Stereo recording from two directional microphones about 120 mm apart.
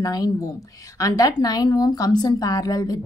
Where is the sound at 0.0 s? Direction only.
30° left (ahead or behind).